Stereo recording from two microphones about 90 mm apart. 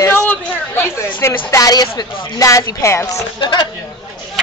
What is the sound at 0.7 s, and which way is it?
Speech, 30° left (ahead or behind).